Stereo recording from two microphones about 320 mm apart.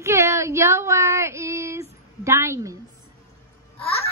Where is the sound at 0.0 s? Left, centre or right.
Centre.